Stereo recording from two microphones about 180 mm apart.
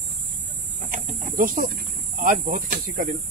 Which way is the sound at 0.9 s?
45° right (ahead or behind).